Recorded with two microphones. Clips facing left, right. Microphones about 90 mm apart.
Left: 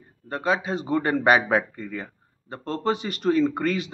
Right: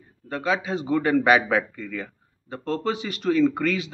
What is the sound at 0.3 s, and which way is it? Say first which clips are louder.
A man's voice: even; 40° left (ahead or behind).